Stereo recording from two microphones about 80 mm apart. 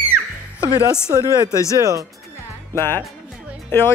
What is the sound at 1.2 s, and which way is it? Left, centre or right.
Speech, left.